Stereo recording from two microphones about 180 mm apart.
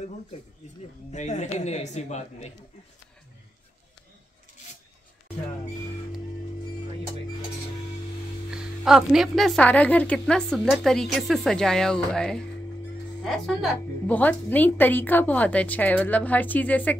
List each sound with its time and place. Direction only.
1.1 s a man's voice: 40° left (ahead or behind)
8.5 s a woman's voice: 5° right (ahead or behind)